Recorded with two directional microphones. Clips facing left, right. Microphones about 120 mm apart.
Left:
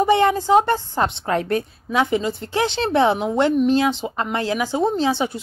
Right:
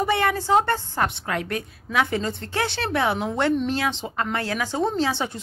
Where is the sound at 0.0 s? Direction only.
20° left (ahead or behind).